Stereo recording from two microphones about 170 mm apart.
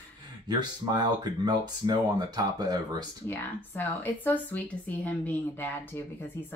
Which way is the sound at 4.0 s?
10° left (ahead or behind).